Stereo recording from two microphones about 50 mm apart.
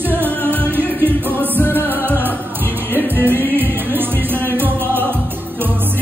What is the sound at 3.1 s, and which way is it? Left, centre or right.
Music, left.